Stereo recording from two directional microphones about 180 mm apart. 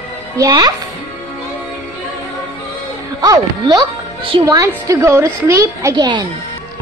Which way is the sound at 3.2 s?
20° right (ahead or behind).